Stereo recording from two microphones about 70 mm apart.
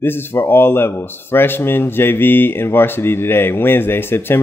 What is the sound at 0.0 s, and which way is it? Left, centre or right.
Speech, left.